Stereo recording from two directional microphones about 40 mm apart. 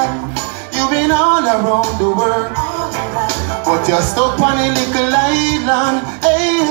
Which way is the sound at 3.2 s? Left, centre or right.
Left.